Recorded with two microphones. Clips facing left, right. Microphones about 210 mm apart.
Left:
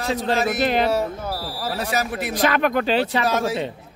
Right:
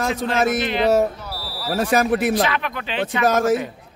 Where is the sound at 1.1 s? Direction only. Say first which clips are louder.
Left 4 dB; 50° left (ahead or behind).